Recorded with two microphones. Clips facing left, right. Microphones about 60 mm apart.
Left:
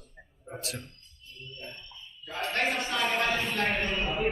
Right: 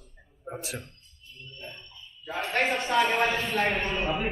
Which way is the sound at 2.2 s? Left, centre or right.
Right.